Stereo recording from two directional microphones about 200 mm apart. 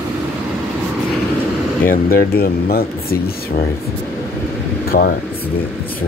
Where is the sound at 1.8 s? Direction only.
45° left (ahead or behind).